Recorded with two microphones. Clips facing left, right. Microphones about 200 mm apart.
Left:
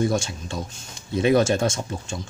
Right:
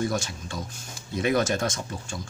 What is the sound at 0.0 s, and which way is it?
Speech, 25° left (ahead or behind).